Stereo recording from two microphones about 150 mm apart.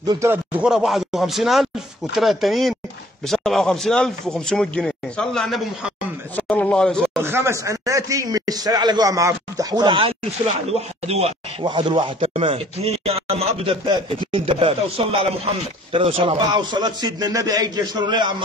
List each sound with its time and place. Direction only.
0.0 s a man's voice: 25° right (ahead or behind)
0.3 s a man's voice: 5° right (ahead or behind)
7.2 s a man's voice: 15° right (ahead or behind)
10.7 s speech: 45° right (ahead or behind)
11.6 s a man's voice: 30° right (ahead or behind)